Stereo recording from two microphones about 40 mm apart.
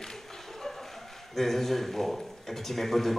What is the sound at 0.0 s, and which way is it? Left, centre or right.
Speech, centre.